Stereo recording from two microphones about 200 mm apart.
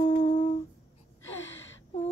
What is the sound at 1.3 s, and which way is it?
Gasp, 70° left (ahead or behind).